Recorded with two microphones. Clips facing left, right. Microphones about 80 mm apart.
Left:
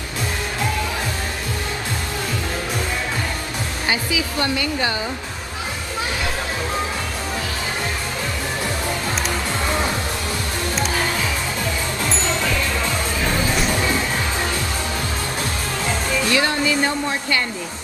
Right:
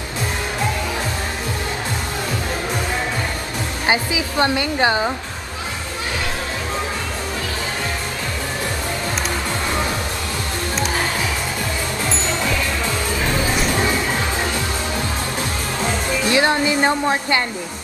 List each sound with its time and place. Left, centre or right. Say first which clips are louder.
3.8 s speech: right 3 dB; right
16.3 s speech: right 4 dB; right